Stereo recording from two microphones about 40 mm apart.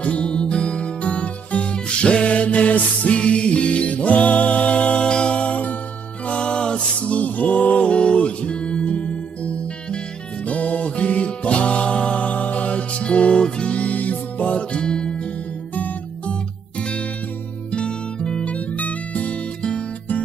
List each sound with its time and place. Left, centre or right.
0.0 s music: left
7.0 s music: left
16.3 s music: left
18.5 s music: left